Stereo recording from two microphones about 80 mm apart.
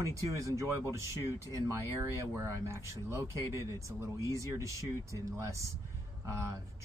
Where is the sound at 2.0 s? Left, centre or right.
Right.